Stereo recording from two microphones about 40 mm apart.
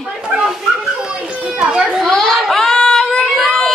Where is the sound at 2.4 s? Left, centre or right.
Centre.